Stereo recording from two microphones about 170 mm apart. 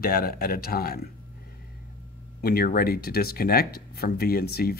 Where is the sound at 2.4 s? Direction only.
60° left (ahead or behind).